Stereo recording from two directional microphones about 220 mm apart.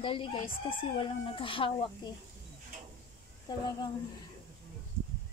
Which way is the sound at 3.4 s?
20° left (ahead or behind).